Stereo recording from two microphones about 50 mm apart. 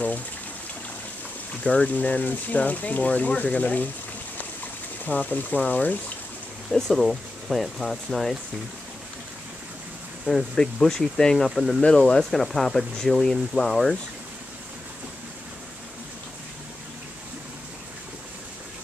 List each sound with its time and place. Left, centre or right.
1.6 s speech: left
5.0 s speech: left
6.7 s speech: centre
10.2 s speech: centre
11.8 s speech: centre
12.3 s speech: centre